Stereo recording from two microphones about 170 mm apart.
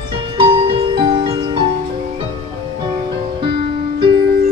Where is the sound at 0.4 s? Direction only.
35° right (ahead or behind).